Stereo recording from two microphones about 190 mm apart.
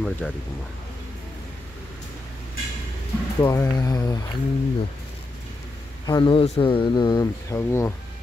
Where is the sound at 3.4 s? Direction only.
15° left (ahead or behind).